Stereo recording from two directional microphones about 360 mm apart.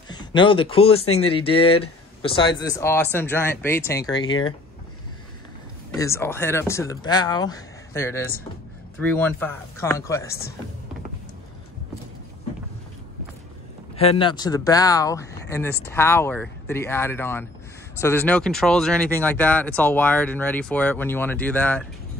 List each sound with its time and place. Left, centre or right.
0.1 s speech: centre
1.0 s speech: left
1.3 s speech: centre
5.9 s speech: centre
13.9 s speech: centre